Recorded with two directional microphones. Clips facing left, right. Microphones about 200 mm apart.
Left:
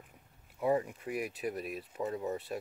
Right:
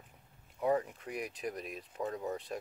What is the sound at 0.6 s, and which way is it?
Speech, 5° left (ahead or behind).